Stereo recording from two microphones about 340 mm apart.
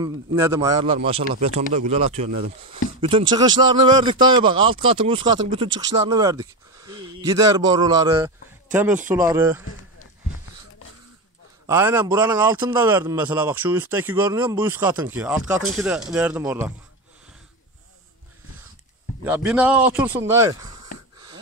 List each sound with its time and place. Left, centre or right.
0.0 s speech: centre
11.6 s a man's voice: centre
19.2 s a man's voice: centre